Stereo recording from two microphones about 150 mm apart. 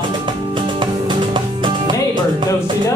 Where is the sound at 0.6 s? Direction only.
30° right (ahead or behind).